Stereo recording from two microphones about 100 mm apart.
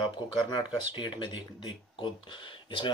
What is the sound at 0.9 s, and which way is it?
Speech, 50° left (ahead or behind).